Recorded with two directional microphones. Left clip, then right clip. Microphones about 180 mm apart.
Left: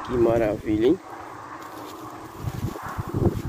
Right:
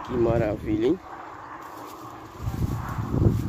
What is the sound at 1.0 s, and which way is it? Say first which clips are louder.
Boat: left 1 dB; 20° right (ahead or behind).